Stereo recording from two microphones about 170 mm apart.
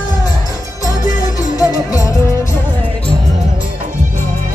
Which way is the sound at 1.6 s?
20° left (ahead or behind).